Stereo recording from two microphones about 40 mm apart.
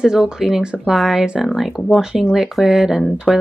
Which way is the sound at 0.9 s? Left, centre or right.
Centre.